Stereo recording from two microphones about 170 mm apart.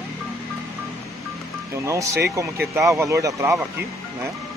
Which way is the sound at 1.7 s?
15° right (ahead or behind).